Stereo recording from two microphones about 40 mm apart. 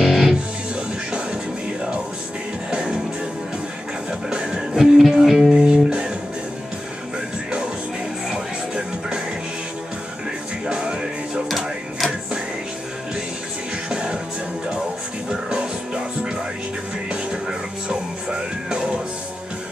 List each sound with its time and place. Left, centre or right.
0.0 s music: centre
0.7 s music: right
2.7 s music: right
4.1 s music: centre
5.7 s music: right
8.3 s music: centre
10.7 s music: centre
11.4 s music: centre
13.8 s music: right
15.5 s music: right